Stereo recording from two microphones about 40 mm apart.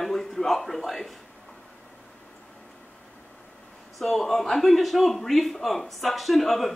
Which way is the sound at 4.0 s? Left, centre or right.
Centre.